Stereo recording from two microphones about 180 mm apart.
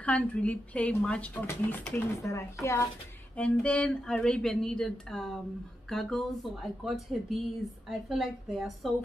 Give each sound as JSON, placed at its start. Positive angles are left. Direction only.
{"t": 0.0, "sound": "speech", "side_deg": 10}